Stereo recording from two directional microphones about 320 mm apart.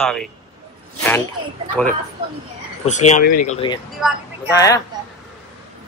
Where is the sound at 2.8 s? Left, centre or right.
Left.